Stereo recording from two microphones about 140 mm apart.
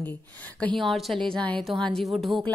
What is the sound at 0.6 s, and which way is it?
A woman's voice, 5° left (ahead or behind).